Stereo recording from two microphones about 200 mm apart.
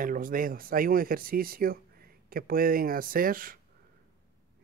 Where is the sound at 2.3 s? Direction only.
45° right (ahead or behind).